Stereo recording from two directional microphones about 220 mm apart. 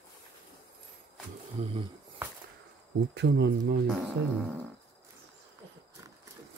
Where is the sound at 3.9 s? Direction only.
5° right (ahead or behind).